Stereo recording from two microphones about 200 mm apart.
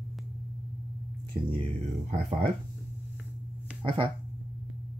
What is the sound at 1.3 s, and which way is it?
Speech, 10° right (ahead or behind).